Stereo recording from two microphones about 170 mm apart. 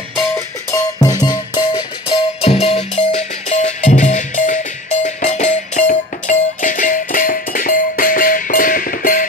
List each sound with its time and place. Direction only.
0.7 s music: 20° left (ahead or behind); by 9.3 s 55° left (ahead or behind)